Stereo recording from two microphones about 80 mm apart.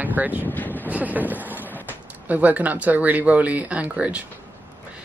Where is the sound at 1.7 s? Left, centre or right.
Left.